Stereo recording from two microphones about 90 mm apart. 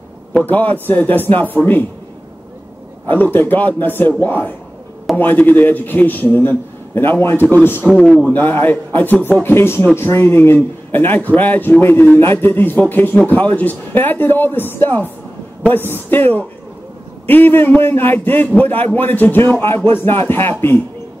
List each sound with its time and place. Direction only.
0.3 s a man's voice: 15° left (ahead or behind)
3.1 s a man's voice: 20° left (ahead or behind)
7.8 s a man's voice: centre (ahead or behind)
8.3 s a man's voice: 20° left (ahead or behind)